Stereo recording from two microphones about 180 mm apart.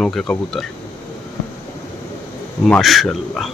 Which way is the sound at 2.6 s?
Centre (ahead or behind).